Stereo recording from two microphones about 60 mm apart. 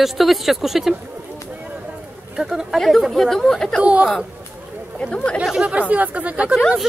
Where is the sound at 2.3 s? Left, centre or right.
Centre.